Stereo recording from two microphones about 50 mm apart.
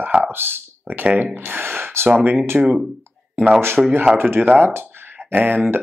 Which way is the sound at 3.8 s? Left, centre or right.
Centre.